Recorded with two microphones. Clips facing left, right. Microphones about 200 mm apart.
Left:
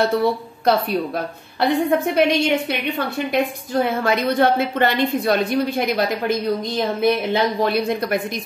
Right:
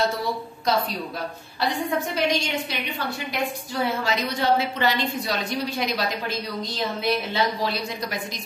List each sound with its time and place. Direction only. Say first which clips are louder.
0.0 s a woman's voice: left 7 dB; 60° left (ahead or behind)